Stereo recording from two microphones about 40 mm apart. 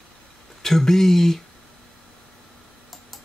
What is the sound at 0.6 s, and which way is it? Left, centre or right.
Speech, centre.